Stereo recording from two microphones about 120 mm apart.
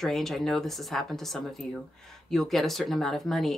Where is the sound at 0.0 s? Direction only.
Centre (ahead or behind).